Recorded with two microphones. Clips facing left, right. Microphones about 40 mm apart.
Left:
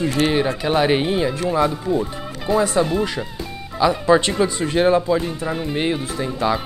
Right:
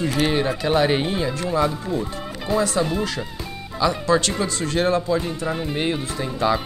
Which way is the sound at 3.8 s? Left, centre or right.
Centre.